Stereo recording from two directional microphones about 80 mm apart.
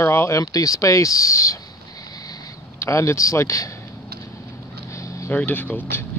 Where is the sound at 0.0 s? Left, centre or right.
Left.